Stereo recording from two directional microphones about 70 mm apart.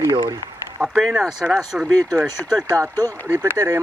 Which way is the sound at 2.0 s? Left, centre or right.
Right.